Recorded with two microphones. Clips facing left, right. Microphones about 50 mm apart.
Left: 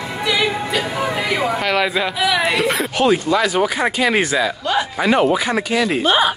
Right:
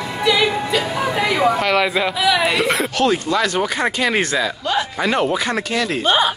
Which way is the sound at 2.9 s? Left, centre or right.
Centre.